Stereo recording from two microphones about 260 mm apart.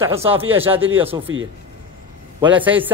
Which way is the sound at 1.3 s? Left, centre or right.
Right.